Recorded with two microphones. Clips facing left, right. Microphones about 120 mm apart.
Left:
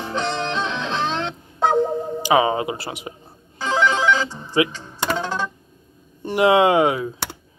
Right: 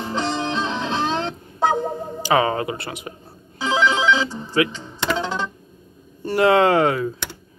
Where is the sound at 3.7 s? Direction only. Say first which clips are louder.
Even; 15° right (ahead or behind).